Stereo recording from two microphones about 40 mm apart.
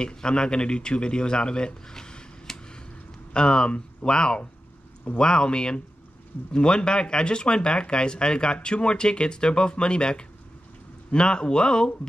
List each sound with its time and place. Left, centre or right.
0.0 s speech: centre